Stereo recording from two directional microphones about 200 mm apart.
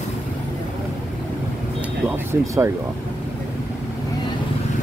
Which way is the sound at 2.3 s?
15° right (ahead or behind).